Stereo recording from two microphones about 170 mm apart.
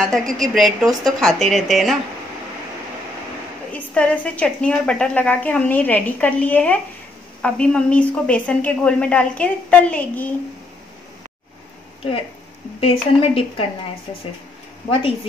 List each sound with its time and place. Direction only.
0.0 s a woman's voice: centre (ahead or behind)
3.7 s a woman's voice: 10° left (ahead or behind)
12.8 s a woman's voice: 35° left (ahead or behind)
14.9 s a woman's voice: 35° left (ahead or behind)